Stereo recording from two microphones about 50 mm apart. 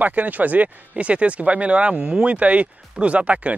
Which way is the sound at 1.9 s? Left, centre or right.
Centre.